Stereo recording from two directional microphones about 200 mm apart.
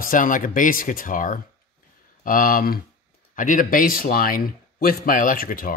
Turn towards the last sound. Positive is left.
turn(degrees=45)  # may be behind; listen again after turning